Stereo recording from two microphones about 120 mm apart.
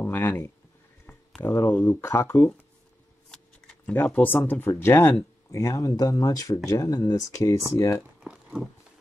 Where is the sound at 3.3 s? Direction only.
10° left (ahead or behind).